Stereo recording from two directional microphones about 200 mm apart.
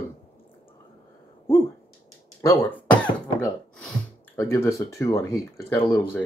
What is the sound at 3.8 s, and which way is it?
Speech, 10° left (ahead or behind).